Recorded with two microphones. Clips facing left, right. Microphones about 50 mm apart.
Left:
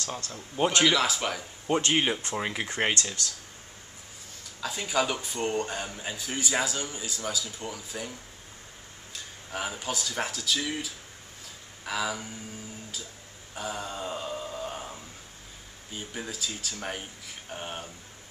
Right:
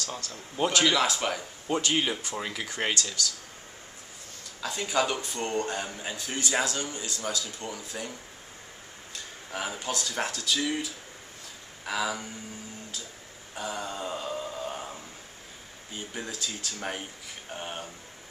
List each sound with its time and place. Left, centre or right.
0.3 s speech: centre
0.8 s a man's voice: centre
1.8 s speech: left
4.6 s a man's voice: centre
9.5 s a man's voice: centre
13.6 s mantra: centre
15.9 s a man's voice: centre